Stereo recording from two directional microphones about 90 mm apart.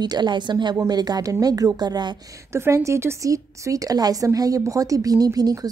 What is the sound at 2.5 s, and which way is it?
A woman's voice, 30° right (ahead or behind).